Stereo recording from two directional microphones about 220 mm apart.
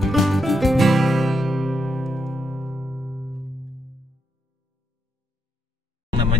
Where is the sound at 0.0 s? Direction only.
Centre (ahead or behind).